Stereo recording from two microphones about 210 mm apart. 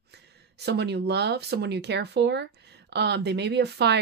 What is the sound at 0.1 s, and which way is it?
Speech, 50° right (ahead or behind).